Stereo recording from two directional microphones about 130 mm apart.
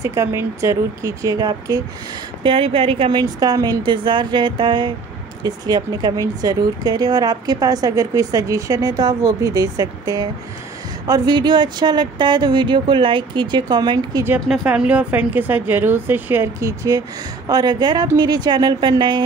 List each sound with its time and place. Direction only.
0.0 s speech: 20° right (ahead or behind)
2.4 s speech: 45° right (ahead or behind)
14.5 s speech: 5° right (ahead or behind); by 19.2 s 35° right (ahead or behind)